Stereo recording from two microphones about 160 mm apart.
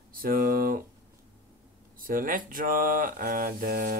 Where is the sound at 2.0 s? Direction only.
60° right (ahead or behind).